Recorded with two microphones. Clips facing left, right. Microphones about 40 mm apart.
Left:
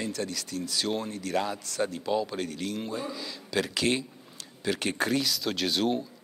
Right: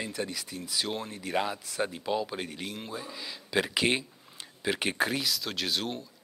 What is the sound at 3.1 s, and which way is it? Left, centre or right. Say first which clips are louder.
Speech: right 5 dB; centre.